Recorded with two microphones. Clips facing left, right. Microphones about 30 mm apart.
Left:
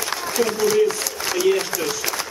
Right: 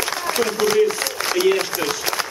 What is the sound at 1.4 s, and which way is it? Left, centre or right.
Speech, centre.